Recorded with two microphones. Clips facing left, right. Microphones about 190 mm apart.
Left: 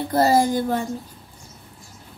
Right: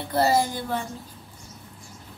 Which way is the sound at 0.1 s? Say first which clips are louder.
Left 4 dB; 45° left (ahead or behind).